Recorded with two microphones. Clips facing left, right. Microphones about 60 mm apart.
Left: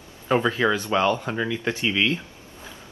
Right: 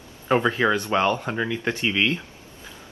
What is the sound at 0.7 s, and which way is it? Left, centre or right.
Speech, right.